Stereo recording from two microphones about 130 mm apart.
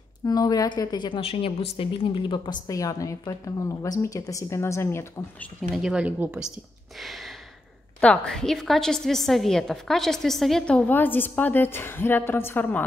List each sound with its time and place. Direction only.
0.2 s a woman's voice: 30° left (ahead or behind)
5.8 s speech: 5° right (ahead or behind)
7.0 s a sound: centre (ahead or behind)
8.0 s a woman's voice: 10° left (ahead or behind)